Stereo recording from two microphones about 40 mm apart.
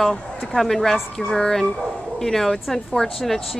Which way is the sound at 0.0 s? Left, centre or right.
Centre.